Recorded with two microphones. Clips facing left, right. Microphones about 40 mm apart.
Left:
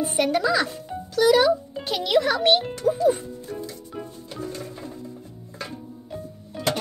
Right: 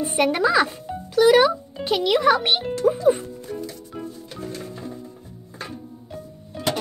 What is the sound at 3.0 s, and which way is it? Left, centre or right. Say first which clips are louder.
Speech: left 1 dB; right.